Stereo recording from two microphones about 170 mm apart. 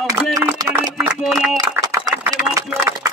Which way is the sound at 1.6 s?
15° right (ahead or behind).